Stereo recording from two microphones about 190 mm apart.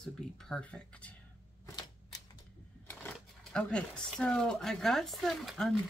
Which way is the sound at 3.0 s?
5° left (ahead or behind).